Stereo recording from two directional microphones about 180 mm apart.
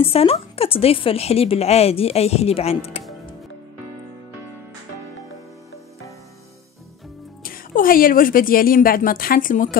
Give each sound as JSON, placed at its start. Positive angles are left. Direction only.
{"t": 0.0, "sound": "a woman's voice", "side_deg": 30}
{"t": 7.4, "sound": "a woman's voice", "side_deg": 50}